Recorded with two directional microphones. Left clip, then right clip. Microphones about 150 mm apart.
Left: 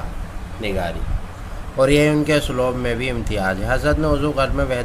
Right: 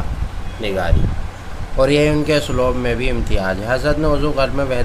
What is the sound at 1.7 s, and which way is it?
A man's voice, 20° left (ahead or behind).